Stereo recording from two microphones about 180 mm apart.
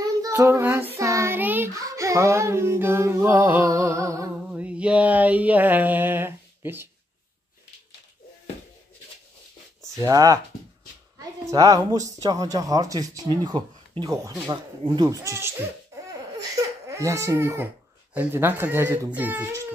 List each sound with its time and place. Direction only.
0.2 s child singing: 15° right (ahead or behind)
4.5 s a sound: 5° right (ahead or behind)
9.9 s a woman's voice: 20° right (ahead or behind)
16.1 s baby cry: 20° right (ahead or behind)
18.1 s speech: 10° right (ahead or behind)